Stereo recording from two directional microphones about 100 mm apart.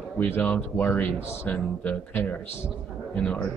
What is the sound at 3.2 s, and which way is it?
Speech, 10° left (ahead or behind).